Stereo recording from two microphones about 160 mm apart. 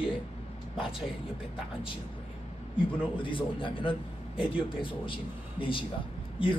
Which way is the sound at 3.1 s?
30° left (ahead or behind).